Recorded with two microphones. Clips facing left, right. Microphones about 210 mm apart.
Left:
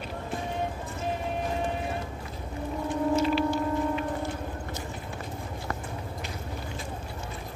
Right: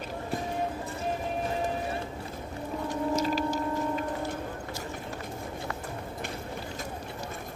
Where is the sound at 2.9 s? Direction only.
40° right (ahead or behind).